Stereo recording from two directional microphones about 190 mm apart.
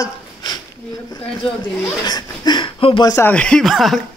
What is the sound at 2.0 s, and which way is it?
Speech, 20° left (ahead or behind).